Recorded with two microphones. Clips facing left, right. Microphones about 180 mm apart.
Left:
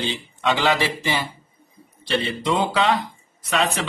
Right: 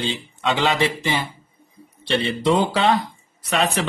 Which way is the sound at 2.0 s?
30° right (ahead or behind).